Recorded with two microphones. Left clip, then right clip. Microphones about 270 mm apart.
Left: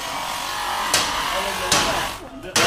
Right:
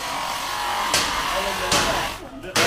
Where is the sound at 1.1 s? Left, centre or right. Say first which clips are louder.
Even; left.